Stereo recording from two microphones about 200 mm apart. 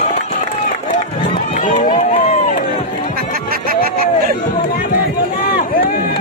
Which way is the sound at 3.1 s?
50° right (ahead or behind).